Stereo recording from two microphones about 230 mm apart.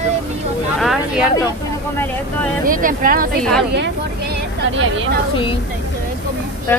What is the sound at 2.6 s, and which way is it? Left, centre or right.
Speech, right.